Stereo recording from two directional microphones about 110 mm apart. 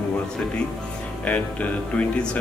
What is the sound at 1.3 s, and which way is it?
Speech, 10° left (ahead or behind).